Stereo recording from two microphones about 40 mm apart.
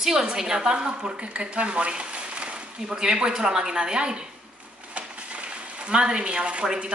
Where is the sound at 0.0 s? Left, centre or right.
Centre.